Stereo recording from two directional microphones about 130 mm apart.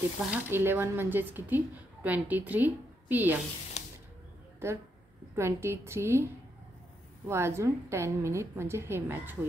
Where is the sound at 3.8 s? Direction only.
60° left (ahead or behind).